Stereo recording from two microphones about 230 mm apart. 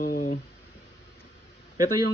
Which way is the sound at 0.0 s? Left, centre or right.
Left.